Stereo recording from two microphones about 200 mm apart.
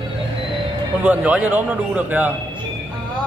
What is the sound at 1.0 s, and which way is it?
A man's voice, 5° right (ahead or behind).